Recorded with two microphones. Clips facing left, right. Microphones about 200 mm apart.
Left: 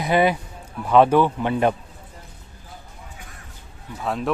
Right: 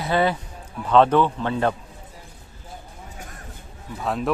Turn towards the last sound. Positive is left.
turn(degrees=0)  # may be behind; listen again after turning